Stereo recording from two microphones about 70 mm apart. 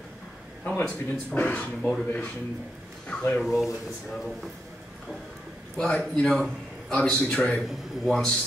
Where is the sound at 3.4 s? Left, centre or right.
Centre.